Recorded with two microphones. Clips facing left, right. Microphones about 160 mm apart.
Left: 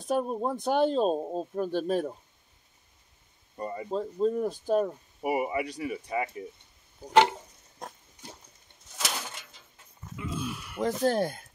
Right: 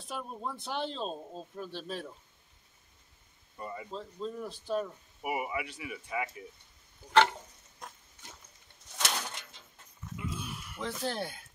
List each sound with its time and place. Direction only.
0.0 s speech: 45° left (ahead or behind)
3.5 s speech: 40° left (ahead or behind)
7.8 s pig: 35° left (ahead or behind)
8.9 s a sound: 5° left (ahead or behind)
10.5 s speech: 75° left (ahead or behind)
10.8 s speech: 45° left (ahead or behind)